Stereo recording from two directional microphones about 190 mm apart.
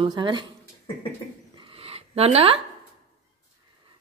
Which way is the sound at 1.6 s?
30° right (ahead or behind).